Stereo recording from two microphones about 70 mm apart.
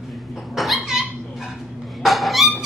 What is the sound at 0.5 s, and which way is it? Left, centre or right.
Dog, centre.